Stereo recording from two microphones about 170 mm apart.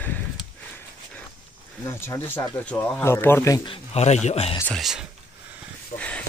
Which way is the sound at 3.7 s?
40° left (ahead or behind).